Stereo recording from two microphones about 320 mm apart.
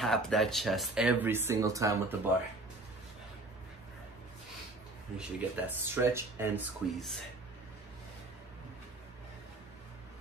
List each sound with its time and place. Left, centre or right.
0.0 s speech: centre
5.1 s speech: centre